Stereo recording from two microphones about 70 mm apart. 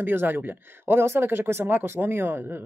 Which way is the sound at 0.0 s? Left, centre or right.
Right.